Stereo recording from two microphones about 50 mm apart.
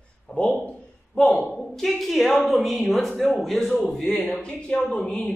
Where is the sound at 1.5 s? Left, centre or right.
Centre.